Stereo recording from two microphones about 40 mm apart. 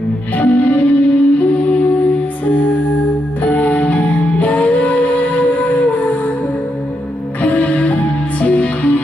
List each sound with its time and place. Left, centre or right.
0.4 s music: left
7.4 s music: left